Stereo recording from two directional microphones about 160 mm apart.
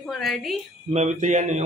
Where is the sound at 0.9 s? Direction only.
45° right (ahead or behind).